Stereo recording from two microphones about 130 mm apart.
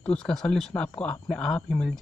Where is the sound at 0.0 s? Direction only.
5° left (ahead or behind).